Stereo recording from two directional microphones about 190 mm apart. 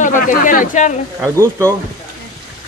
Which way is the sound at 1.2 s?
15° right (ahead or behind).